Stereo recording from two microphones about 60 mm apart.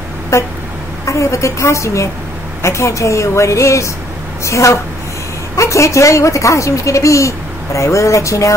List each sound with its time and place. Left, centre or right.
0.3 s vehicle: left
1.0 s speech: left